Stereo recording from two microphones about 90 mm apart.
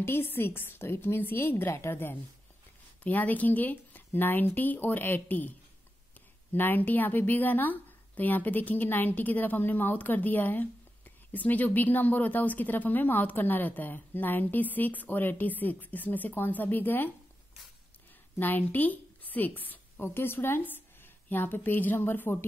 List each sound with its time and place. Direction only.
0.0 s a woman's voice: 25° left (ahead or behind)
6.5 s a woman's voice: 20° left (ahead or behind)
18.4 s a woman's voice: 20° left (ahead or behind)